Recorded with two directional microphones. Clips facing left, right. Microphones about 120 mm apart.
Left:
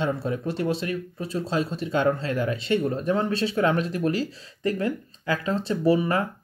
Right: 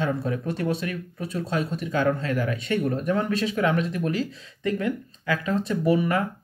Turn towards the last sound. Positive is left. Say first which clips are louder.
# left 1 dB
turn(degrees=30)  # may be behind; listen again after turning